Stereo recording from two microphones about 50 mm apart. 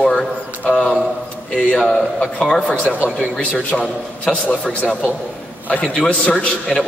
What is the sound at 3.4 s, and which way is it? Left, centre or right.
Speech, left.